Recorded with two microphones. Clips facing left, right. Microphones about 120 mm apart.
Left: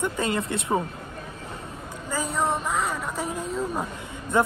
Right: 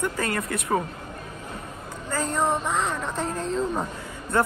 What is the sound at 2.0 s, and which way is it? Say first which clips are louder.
Speech: right 1 dB; 10° left (ahead or behind).